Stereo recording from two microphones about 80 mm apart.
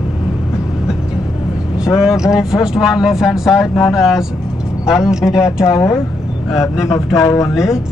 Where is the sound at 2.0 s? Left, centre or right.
Centre.